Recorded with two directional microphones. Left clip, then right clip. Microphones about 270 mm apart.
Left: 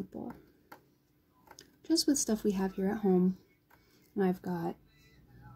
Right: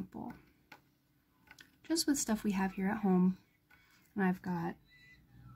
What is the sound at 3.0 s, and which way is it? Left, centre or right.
Speech, right.